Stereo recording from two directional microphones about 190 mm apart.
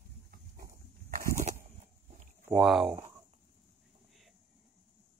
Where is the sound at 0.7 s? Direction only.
45° right (ahead or behind).